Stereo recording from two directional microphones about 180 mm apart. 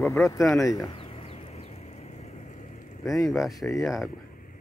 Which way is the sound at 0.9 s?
35° left (ahead or behind).